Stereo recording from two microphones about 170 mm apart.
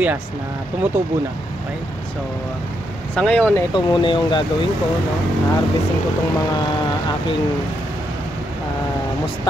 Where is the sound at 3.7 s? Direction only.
30° left (ahead or behind).